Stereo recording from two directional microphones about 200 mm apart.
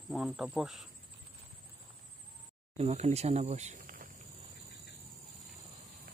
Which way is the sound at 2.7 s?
35° right (ahead or behind).